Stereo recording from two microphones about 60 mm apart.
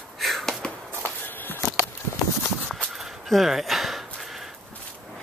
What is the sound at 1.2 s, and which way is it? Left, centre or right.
Walk, left.